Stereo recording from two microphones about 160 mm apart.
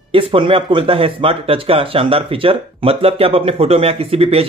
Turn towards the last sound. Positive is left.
turn(degrees=-35)  # may be behind; listen again after turning